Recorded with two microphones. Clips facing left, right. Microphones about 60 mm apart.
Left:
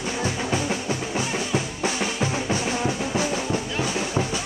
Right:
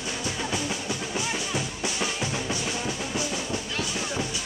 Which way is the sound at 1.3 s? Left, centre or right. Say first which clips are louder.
Left 4 dB; left.